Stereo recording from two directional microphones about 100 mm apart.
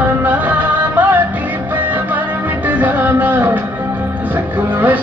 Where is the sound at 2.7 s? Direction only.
20° right (ahead or behind).